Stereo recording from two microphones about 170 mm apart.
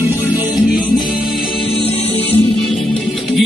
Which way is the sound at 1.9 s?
35° left (ahead or behind).